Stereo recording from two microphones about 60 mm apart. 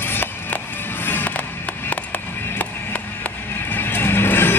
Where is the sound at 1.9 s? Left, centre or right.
Left.